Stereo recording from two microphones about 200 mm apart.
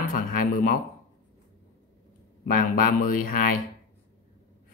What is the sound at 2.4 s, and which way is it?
Speech, 45° left (ahead or behind).